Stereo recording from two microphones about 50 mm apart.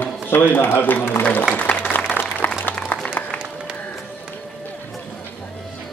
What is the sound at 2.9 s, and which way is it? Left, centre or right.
Music, left.